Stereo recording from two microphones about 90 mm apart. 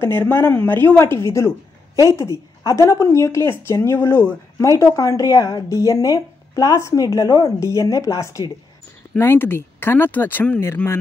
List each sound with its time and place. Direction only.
0.0 s speech: 25° left (ahead or behind)